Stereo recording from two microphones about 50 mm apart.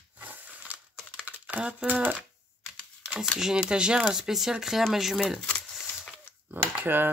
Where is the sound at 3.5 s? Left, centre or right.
Centre.